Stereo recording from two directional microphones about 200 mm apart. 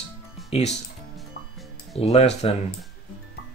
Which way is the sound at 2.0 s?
35° left (ahead or behind).